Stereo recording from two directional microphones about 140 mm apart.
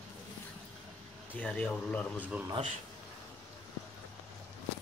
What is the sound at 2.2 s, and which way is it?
Speech, 10° right (ahead or behind).